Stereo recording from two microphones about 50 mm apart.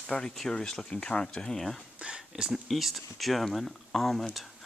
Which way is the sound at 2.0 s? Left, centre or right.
Centre.